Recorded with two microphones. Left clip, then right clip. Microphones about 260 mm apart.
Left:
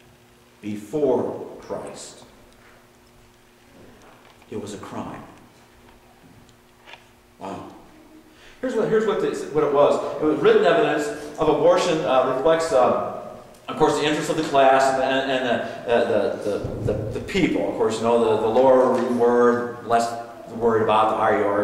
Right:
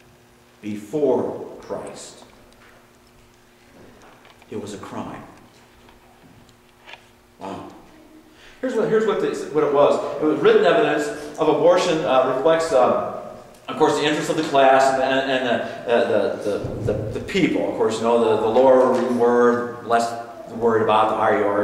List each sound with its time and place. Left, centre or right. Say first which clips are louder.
0.6 s speech: right 1 dB; centre
0.9 s speech: right 1 dB; right
2.0 s a man's voice: right 1 dB; centre
4.6 s a man's voice: right 1 dB; centre
7.4 s a man's voice: right 1 dB; centre
13.1 s a sound: right 1 dB; centre
13.5 s a man's voice: right 1 dB; centre
19.6 s a sound: right 1 dB; centre
19.9 s a man's voice: right 1 dB; centre
20.2 s a sound: right 1 dB; centre
20.8 s a man's voice: right 1 dB; centre